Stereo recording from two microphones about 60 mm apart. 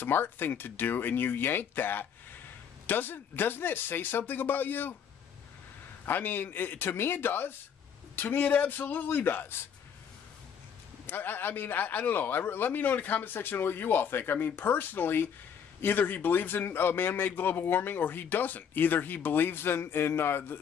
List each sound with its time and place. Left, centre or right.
0.0 s a man's voice: left
6.0 s a man's voice: left
11.1 s a man's voice: left